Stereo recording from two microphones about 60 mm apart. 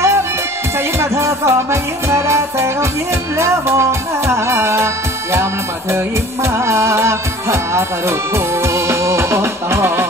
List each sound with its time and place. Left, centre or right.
0.9 s music: right